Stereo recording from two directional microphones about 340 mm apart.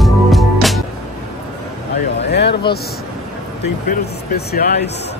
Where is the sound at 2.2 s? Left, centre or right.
Left.